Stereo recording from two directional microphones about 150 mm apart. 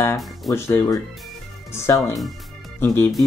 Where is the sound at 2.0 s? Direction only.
Centre (ahead or behind).